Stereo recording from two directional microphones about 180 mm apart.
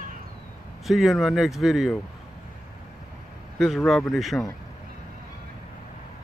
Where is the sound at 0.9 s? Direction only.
Centre (ahead or behind).